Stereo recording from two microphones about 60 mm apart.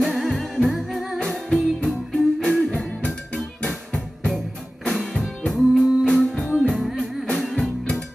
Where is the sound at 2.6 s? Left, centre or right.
Centre.